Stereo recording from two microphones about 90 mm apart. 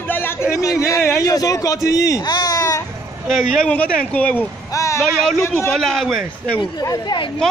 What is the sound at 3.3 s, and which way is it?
Speech, centre (ahead or behind).